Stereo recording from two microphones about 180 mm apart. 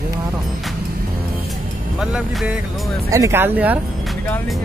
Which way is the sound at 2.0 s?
5° right (ahead or behind).